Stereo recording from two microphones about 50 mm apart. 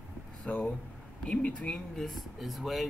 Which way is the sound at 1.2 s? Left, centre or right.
Left.